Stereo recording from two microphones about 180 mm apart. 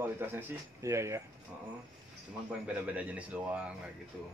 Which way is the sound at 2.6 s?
10° right (ahead or behind).